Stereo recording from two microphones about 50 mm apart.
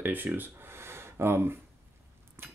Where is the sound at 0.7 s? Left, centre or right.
Right.